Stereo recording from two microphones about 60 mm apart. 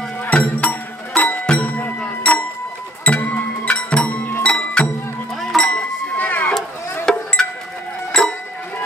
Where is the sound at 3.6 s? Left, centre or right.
Centre.